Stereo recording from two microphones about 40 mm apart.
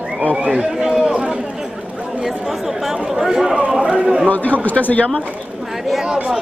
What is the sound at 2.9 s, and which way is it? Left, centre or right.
A man's voice, centre.